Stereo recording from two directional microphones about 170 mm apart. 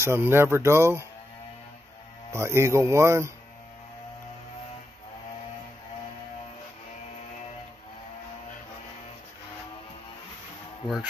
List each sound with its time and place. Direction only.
0.0 s speech: 15° right (ahead or behind)
2.3 s speech: 15° right (ahead or behind)